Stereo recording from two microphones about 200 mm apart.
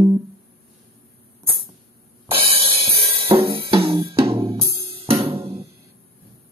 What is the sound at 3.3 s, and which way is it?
Music, 30° right (ahead or behind).